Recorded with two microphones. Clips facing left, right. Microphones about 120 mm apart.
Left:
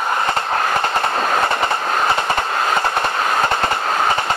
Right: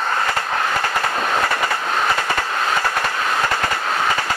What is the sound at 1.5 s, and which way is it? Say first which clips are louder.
Train: left 2 dB; 25° left (ahead or behind).